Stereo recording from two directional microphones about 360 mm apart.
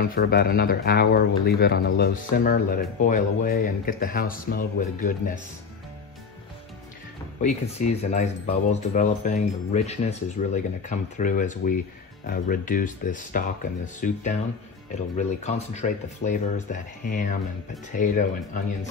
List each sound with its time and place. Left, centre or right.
0.0 s speech: left
7.4 s speech: centre